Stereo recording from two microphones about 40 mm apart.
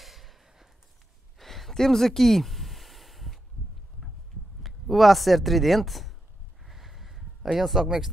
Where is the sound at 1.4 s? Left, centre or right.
Centre.